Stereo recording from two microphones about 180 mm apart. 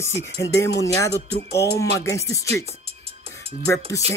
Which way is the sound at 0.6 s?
20° left (ahead or behind).